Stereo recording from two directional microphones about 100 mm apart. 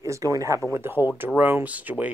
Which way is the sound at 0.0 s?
35° right (ahead or behind).